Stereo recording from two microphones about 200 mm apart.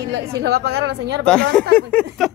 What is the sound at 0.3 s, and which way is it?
Speech, 55° right (ahead or behind).